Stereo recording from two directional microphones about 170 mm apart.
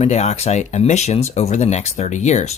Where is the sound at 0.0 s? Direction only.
40° left (ahead or behind).